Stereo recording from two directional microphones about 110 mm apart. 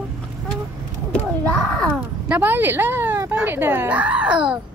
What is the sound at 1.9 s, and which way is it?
Speech, 10° right (ahead or behind).